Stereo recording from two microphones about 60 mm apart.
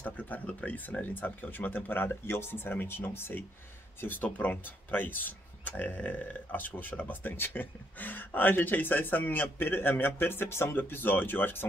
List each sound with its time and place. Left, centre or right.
0.0 s speech: left